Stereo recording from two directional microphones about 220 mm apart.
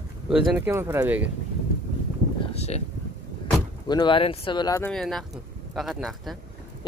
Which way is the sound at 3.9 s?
20° left (ahead or behind).